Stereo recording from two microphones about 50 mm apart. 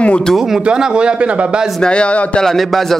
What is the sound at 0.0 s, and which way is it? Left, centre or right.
Speech, left.